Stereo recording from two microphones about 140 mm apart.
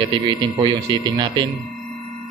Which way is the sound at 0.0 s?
35° right (ahead or behind).